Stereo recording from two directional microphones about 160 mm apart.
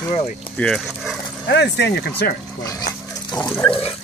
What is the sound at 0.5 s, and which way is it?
Speech, 5° left (ahead or behind).